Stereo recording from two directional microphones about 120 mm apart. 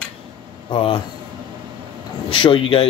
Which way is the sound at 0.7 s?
50° left (ahead or behind).